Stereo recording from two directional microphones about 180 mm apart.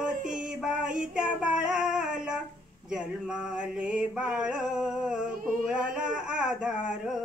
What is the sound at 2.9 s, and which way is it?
Mantra, 5° right (ahead or behind).